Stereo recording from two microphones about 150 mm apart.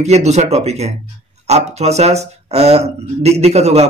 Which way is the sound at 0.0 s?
45° right (ahead or behind).